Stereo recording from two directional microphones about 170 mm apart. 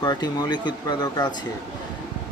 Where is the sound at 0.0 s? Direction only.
25° left (ahead or behind).